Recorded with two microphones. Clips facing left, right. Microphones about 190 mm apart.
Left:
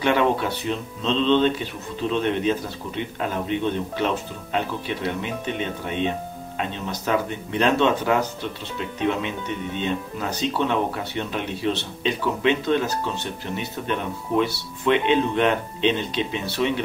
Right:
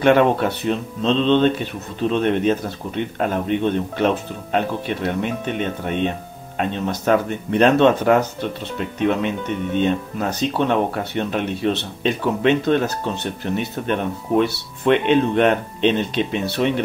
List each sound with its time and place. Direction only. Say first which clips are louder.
0.0 s speech: right 5 dB; 55° right (ahead or behind)